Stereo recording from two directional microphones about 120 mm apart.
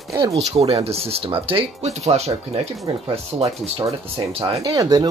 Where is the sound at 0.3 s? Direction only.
60° right (ahead or behind).